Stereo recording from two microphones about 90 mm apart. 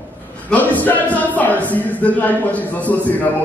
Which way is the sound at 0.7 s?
15° left (ahead or behind).